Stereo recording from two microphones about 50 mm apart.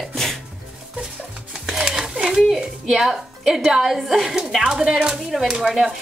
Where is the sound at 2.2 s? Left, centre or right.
Centre.